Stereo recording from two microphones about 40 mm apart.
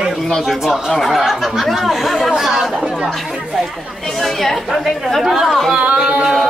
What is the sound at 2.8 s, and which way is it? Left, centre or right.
Speech, right.